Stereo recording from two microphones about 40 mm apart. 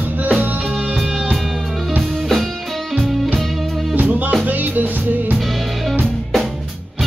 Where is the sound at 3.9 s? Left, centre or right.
Right.